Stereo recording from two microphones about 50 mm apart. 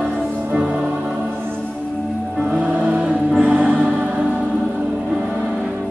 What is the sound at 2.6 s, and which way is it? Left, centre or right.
Music, right.